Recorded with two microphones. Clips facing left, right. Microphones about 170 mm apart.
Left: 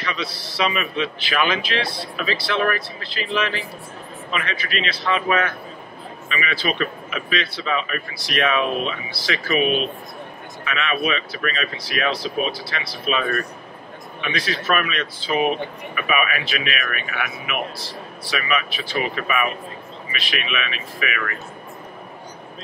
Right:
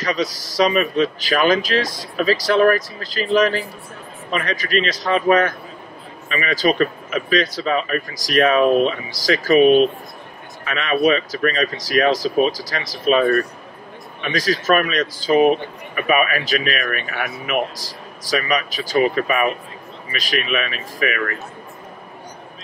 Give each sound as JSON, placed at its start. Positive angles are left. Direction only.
{"t": 0.0, "sound": "speech", "side_deg": -40}